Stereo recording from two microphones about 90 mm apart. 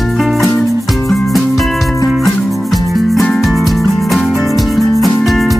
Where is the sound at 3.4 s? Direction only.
Centre (ahead or behind).